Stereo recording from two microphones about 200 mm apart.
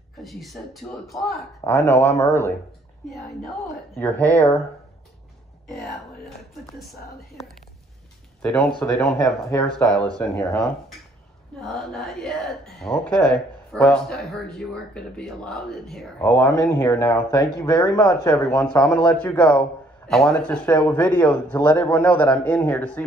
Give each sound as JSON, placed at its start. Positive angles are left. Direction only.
{"t": 0.2, "sound": "speech", "side_deg": 0}
{"t": 1.6, "sound": "a man's voice", "side_deg": 15}
{"t": 3.1, "sound": "speech", "side_deg": 0}
{"t": 5.7, "sound": "speech", "side_deg": 0}
{"t": 8.4, "sound": "a man's voice", "side_deg": 5}